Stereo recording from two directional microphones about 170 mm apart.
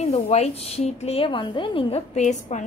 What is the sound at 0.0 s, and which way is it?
A woman's voice, 40° left (ahead or behind).